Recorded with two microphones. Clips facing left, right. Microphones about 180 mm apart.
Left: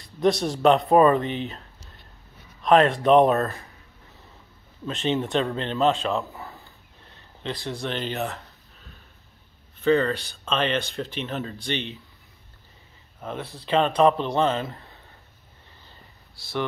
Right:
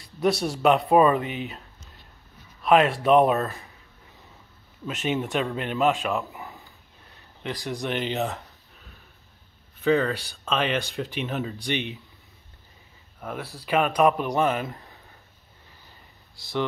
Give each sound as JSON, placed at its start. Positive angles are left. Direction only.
{"t": 0.2, "sound": "speech", "side_deg": -5}
{"t": 2.6, "sound": "speech", "side_deg": -5}
{"t": 4.8, "sound": "speech", "side_deg": -10}
{"t": 6.3, "sound": "a sound", "side_deg": -15}
{"t": 7.4, "sound": "speech", "side_deg": -15}
{"t": 9.8, "sound": "speech", "side_deg": -5}
{"t": 13.2, "sound": "speech", "side_deg": 20}
{"t": 13.9, "sound": "speech", "side_deg": -10}
{"t": 16.3, "sound": "speech", "side_deg": -20}